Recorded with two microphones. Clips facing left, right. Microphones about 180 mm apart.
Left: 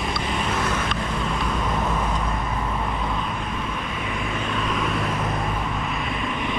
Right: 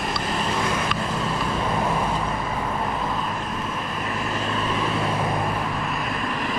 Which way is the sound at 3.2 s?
Centre (ahead or behind).